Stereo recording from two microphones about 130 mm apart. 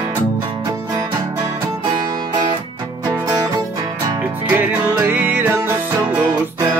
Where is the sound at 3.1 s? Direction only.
30° right (ahead or behind).